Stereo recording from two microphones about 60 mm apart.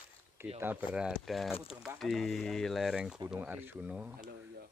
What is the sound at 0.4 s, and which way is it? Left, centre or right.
Speech, right.